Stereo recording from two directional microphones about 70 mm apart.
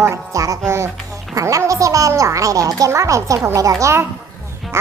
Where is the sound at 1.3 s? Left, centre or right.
Right.